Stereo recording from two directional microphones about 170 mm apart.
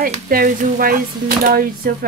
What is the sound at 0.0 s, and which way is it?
Speech, 60° right (ahead or behind).